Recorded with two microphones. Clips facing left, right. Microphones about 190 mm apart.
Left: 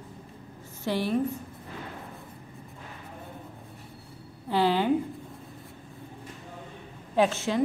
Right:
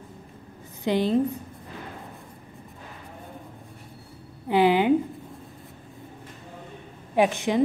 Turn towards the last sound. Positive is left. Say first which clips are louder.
# right 3 dB
turn(degrees=-15)  # may be behind; listen again after turning